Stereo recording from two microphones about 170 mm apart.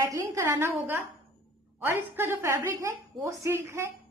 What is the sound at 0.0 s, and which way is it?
A woman's voice, 20° right (ahead or behind).